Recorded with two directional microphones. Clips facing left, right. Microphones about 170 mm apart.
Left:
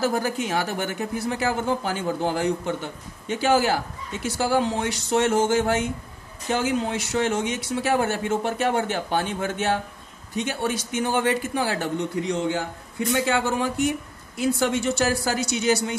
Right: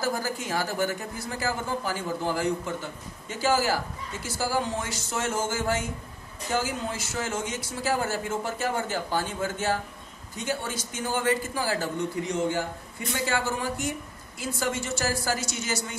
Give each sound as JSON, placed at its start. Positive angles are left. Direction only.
{"t": 0.0, "sound": "speech", "side_deg": 70}
{"t": 13.1, "sound": "speech", "side_deg": 65}